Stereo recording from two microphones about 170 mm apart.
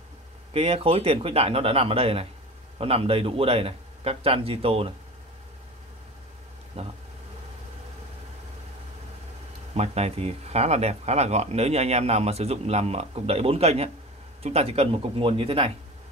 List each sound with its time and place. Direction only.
0.5 s speech: 35° right (ahead or behind)
6.8 s speech: 35° right (ahead or behind)
9.8 s speech: 40° right (ahead or behind)